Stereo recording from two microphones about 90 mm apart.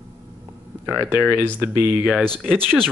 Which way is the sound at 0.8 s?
25° right (ahead or behind).